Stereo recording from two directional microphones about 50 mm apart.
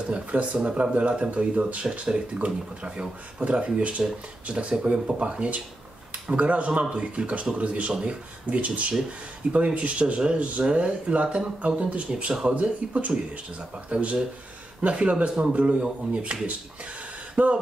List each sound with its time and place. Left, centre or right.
0.1 s speech: right